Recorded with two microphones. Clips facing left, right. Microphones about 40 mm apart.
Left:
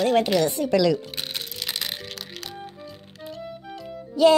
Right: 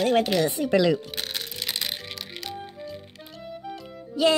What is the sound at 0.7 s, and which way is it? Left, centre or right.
Speech, right.